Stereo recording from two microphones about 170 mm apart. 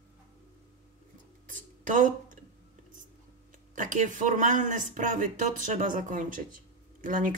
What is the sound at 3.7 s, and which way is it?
Speech, 50° right (ahead or behind).